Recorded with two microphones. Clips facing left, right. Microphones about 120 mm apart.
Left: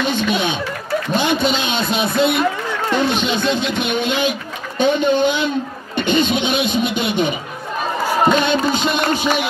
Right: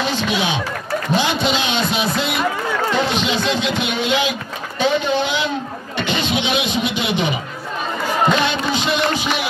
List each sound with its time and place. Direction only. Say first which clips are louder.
0.1 s snicker: left 1 dB; 55° left (ahead or behind)
1.1 s speech: left 1 dB; 50° left (ahead or behind)
8.4 s music: left 3 dB; 50° left (ahead or behind)